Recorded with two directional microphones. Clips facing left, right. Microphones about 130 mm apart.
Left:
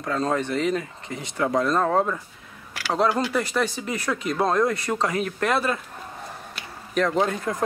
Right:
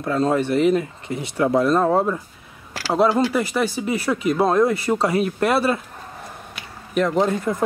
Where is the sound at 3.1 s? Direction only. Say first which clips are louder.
Right 5 dB; 30° right (ahead or behind).